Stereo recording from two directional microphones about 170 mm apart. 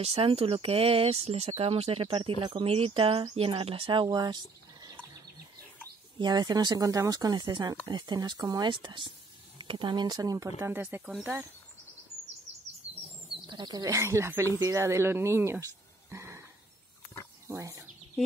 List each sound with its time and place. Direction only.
0.0 s speech: 35° right (ahead or behind)
6.1 s speech: 25° right (ahead or behind)
13.5 s speech: 25° right (ahead or behind)
17.5 s speech: 20° right (ahead or behind)